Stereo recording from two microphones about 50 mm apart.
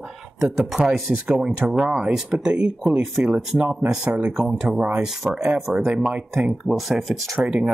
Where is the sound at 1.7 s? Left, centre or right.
Centre.